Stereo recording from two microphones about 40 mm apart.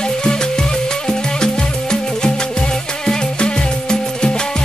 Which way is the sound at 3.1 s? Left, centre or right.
Left.